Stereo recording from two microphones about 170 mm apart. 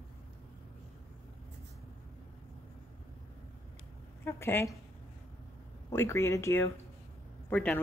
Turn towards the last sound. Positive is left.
turn(degrees=5)  # may be behind; listen again after turning